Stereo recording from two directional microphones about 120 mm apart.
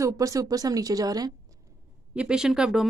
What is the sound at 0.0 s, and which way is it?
Speech, 30° right (ahead or behind).